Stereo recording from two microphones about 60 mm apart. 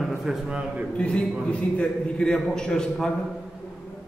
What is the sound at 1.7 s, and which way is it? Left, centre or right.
A man's voice, centre.